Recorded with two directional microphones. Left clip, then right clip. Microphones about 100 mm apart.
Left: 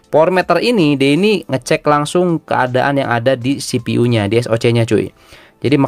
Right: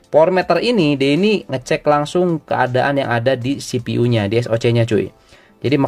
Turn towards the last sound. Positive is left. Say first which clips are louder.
# left 3 dB
turn(degrees=30)  # may be behind; listen again after turning